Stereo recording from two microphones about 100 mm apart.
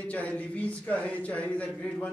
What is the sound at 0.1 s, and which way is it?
A man's voice, 15° left (ahead or behind).